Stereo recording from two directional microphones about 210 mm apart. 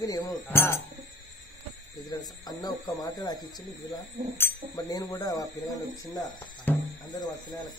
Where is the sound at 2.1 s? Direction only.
20° left (ahead or behind).